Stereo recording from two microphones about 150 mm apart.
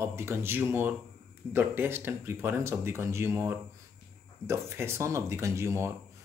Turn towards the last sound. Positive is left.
turn(degrees=-20)  # may be behind; listen again after turning